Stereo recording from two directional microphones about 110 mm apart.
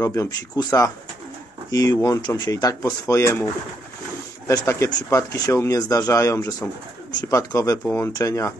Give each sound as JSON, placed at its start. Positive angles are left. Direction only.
{"t": 0.0, "sound": "speech", "side_deg": 30}
{"t": 4.5, "sound": "speech", "side_deg": 25}